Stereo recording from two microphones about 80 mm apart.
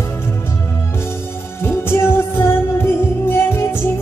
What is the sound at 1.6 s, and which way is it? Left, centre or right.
Music, left.